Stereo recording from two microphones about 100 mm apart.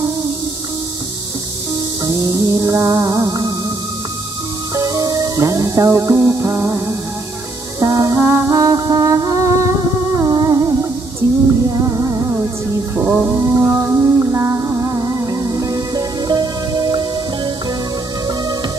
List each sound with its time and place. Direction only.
2.0 s music: 35° right (ahead or behind)
4.7 s music: 35° right (ahead or behind)